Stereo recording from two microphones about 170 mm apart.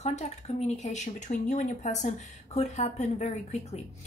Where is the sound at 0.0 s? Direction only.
40° left (ahead or behind).